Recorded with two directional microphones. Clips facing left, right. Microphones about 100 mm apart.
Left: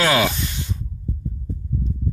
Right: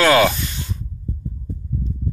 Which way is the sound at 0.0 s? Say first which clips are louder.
Right 5 dB; 10° left (ahead or behind).